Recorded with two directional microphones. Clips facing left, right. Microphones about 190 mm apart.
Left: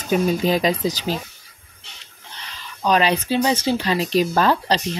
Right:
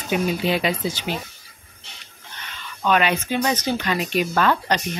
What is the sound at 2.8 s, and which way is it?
Speech, 35° left (ahead or behind).